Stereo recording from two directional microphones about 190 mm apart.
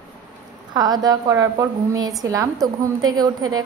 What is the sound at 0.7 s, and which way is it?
A woman's voice, 20° right (ahead or behind).